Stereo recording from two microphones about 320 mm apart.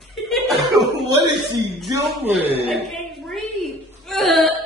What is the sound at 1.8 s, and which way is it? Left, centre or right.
Speech, centre.